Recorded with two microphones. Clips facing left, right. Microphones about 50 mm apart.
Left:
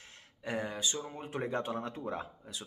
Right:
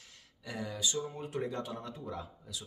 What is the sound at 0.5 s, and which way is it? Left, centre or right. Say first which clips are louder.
Speech: left 2 dB; left.